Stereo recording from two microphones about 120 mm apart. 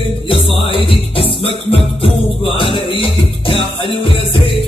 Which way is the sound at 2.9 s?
45° left (ahead or behind).